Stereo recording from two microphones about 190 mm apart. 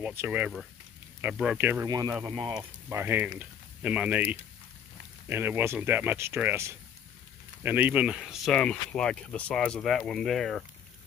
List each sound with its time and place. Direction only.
0.0 s speech: 10° right (ahead or behind); by 2.6 s 25° right (ahead or behind)
2.9 s speech: 10° right (ahead or behind)